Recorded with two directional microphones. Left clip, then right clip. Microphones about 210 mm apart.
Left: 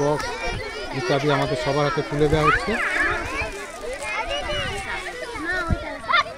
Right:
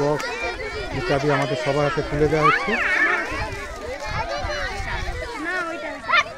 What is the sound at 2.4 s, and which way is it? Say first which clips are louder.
Speech: right 2 dB; 35° right (ahead or behind).